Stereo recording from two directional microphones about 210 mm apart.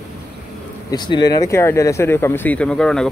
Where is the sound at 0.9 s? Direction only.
20° left (ahead or behind).